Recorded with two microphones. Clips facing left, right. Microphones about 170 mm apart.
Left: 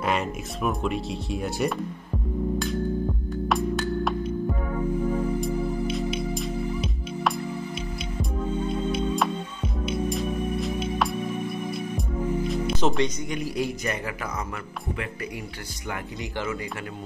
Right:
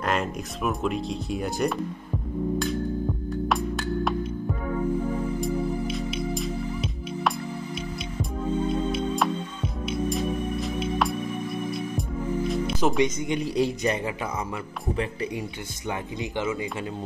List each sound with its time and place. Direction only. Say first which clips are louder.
0.0 s speech: even; 5° left (ahead or behind)
3.4 s music: left 3 dB; centre (ahead or behind)
5.4 s music: even; centre (ahead or behind)
8.9 s music: even; centre (ahead or behind)
12.4 s music: right 2 dB; centre (ahead or behind)
12.9 s speech: right 3 dB; 20° right (ahead or behind)
15.9 s speech: right 3 dB; 20° right (ahead or behind)